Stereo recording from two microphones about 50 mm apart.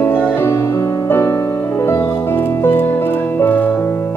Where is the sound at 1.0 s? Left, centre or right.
Left.